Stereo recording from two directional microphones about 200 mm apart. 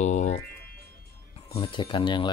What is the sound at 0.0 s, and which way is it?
Music, 35° left (ahead or behind).